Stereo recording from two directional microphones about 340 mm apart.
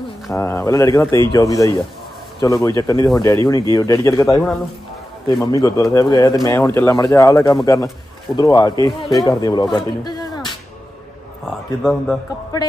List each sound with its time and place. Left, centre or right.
0.3 s a man's voice: centre
11.4 s a man's voice: centre